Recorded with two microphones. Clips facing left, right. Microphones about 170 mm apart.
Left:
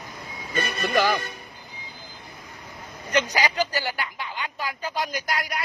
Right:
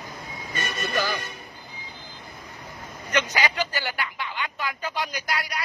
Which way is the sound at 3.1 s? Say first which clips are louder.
Left 2 dB; 35° left (ahead or behind).